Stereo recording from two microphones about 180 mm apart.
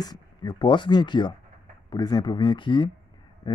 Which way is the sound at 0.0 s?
20° left (ahead or behind).